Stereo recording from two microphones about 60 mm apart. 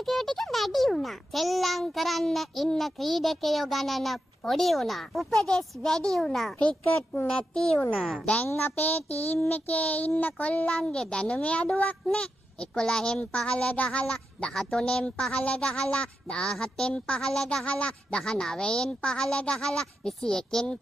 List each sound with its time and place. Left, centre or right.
0.0 s a child's voice: centre
7.9 s a child's voice: centre
8.5 s child singing: left
8.8 s child singing: left
9.5 s a child's voice: left